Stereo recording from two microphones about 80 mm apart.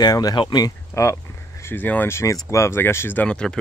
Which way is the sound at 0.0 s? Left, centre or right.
Left.